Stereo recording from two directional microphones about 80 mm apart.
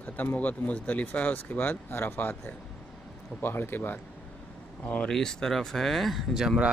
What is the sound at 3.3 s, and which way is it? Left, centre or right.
Speech, left.